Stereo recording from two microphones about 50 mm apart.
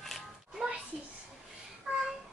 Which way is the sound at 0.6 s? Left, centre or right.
Centre.